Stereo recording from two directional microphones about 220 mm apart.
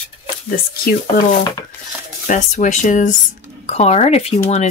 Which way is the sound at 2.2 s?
35° left (ahead or behind).